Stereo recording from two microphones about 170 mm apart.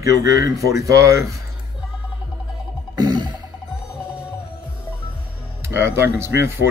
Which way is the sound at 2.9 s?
25° right (ahead or behind).